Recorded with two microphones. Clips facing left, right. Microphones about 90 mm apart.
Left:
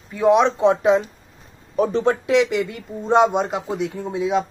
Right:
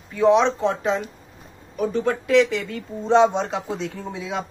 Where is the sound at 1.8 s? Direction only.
30° left (ahead or behind).